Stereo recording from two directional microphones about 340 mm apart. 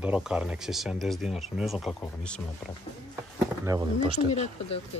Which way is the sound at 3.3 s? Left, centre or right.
Centre.